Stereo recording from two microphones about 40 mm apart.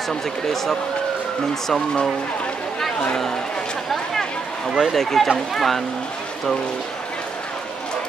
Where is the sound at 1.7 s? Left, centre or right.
Centre.